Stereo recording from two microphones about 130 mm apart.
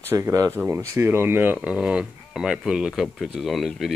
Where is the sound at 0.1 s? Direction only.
20° right (ahead or behind).